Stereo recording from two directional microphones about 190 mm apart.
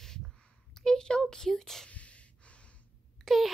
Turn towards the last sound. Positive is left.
turn(degrees=0)  # may be behind; listen again after turning